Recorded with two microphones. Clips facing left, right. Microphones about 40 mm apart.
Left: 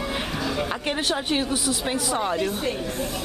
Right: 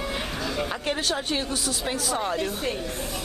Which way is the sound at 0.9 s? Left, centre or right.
Centre.